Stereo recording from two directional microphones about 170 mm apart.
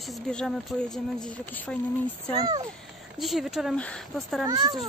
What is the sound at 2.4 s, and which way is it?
Speech, 20° right (ahead or behind).